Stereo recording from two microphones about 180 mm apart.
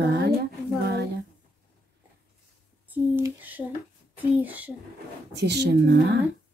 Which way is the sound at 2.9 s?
10° right (ahead or behind).